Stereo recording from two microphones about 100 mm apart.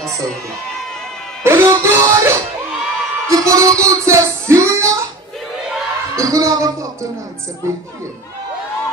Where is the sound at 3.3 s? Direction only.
30° right (ahead or behind).